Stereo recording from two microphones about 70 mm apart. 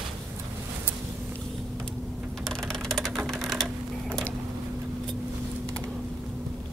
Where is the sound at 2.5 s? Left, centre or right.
Centre.